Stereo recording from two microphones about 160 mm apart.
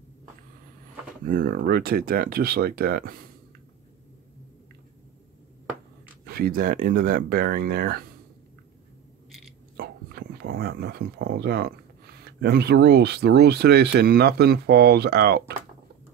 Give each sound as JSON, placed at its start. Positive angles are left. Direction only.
{"t": 1.2, "sound": "speech", "side_deg": -60}
{"t": 6.2, "sound": "speech", "side_deg": -70}
{"t": 9.8, "sound": "speech", "side_deg": -75}